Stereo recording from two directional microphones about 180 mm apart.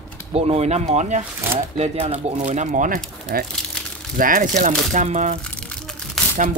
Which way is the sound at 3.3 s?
55° right (ahead or behind).